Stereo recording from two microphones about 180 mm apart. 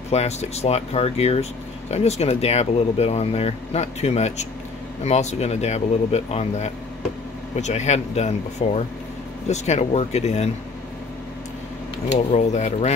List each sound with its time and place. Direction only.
0.1 s speech: 35° left (ahead or behind)
12.1 s speech: 40° left (ahead or behind)